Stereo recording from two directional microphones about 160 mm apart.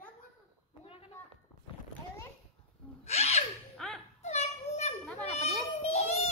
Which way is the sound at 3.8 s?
5° left (ahead or behind).